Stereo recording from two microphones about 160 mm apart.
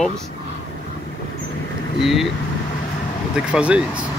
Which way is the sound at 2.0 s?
Centre (ahead or behind).